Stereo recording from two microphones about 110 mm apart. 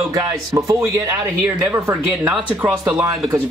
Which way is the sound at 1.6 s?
15° right (ahead or behind).